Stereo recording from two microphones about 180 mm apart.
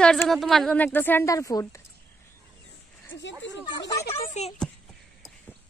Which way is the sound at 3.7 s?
20° left (ahead or behind).